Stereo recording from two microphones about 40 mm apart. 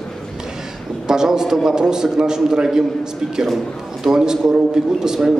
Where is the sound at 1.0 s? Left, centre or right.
Centre.